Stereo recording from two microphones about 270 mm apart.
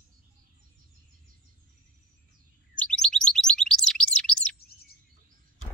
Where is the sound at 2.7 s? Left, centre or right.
Centre.